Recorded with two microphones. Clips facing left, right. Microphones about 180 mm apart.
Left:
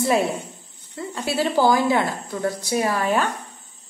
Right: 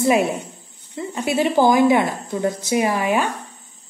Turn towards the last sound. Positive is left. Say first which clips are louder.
# right 2 dB
turn(degrees=-15)  # may be behind; listen again after turning